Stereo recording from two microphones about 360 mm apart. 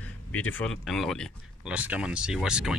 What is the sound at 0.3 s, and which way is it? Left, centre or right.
Speech, centre.